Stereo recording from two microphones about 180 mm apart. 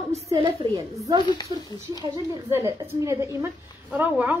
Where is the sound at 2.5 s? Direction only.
15° right (ahead or behind).